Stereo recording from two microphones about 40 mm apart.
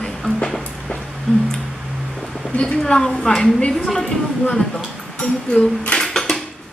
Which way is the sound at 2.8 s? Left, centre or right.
Centre.